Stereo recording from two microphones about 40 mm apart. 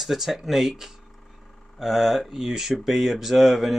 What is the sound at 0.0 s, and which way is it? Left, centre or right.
Speech, centre.